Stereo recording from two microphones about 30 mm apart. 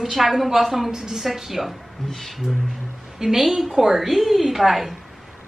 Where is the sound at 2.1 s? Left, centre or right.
Centre.